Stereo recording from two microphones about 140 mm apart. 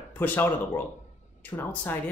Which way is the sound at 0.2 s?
15° left (ahead or behind).